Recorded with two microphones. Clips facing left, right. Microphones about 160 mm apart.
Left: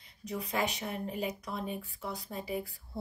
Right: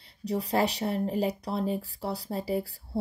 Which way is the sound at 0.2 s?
35° right (ahead or behind).